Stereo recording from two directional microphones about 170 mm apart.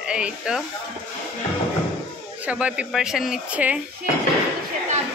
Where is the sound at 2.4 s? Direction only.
5° right (ahead or behind).